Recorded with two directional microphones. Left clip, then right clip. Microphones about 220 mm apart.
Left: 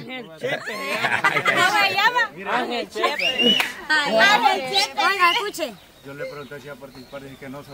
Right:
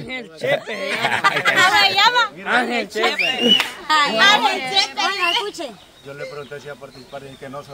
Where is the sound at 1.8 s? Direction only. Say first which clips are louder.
Right 4 dB; 10° right (ahead or behind).